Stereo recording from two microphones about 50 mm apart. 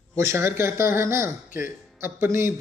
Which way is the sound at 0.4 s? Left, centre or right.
Right.